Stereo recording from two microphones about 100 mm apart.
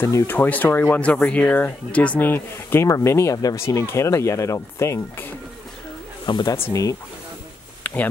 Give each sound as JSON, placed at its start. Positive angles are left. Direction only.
{"t": 0.0, "sound": "speech", "side_deg": 25}
{"t": 6.2, "sound": "speech", "side_deg": 50}
{"t": 6.7, "sound": "speech", "side_deg": 35}
{"t": 7.8, "sound": "a sound", "side_deg": 15}